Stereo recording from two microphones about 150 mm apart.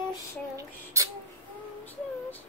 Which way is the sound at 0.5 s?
20° right (ahead or behind).